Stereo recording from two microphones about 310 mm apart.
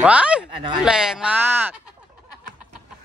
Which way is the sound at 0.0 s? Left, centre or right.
Centre.